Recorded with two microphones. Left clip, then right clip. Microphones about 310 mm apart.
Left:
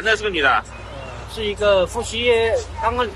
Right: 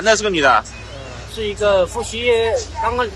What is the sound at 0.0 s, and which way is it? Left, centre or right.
Speech, centre.